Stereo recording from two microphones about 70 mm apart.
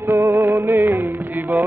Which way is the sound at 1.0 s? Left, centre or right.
Right.